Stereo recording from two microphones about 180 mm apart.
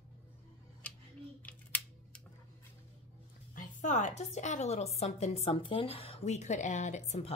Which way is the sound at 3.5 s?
45° left (ahead or behind).